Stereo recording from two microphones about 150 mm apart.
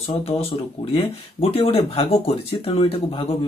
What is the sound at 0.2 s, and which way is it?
Speech, 40° left (ahead or behind).